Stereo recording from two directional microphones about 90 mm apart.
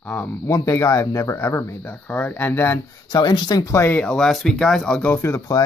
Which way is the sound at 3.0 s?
50° left (ahead or behind).